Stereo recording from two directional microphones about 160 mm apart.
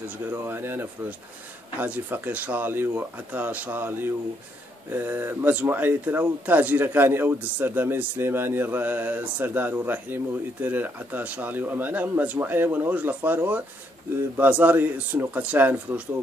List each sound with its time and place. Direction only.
0.3 s speech: 15° right (ahead or behind)